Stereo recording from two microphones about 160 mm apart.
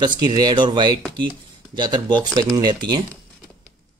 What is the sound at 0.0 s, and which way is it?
Speech, 25° right (ahead or behind).